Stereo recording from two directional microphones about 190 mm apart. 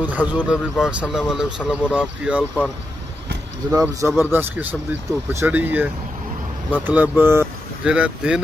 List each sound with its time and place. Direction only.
0.0 s speech: 10° right (ahead or behind)
3.7 s speech: 15° right (ahead or behind)